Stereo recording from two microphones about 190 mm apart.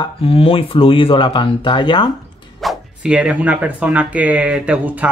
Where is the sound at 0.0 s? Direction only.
30° left (ahead or behind).